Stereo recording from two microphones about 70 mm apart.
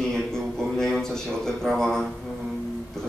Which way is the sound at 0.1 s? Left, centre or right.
Centre.